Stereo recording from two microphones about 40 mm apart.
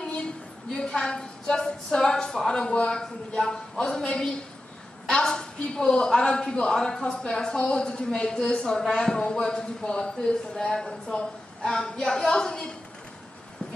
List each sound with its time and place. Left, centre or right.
0.7 s a man's voice: left